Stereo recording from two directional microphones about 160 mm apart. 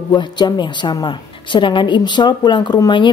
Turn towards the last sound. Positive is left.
turn(degrees=30)  # may be behind; listen again after turning